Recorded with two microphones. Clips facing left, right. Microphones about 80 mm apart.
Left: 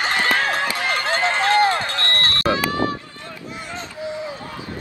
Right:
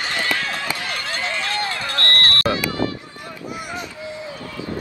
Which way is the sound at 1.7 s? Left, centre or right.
Left.